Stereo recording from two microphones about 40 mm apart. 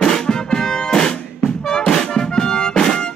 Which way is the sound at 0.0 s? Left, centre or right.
Centre.